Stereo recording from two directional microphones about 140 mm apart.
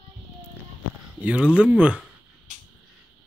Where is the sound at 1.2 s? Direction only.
10° right (ahead or behind).